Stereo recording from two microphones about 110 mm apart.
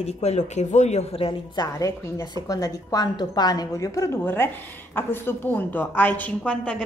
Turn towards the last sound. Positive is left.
turn(degrees=10)  # may be behind; listen again after turning